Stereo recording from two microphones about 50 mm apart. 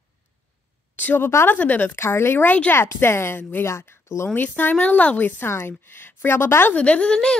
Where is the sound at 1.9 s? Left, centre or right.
Left.